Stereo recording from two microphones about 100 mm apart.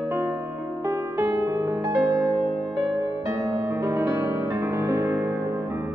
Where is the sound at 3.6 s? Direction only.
25° right (ahead or behind).